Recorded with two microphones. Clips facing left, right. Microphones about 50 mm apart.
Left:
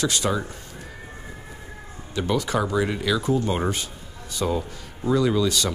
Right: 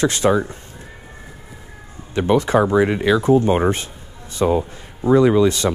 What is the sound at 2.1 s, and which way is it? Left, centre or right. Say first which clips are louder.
Speech: right 8 dB; right.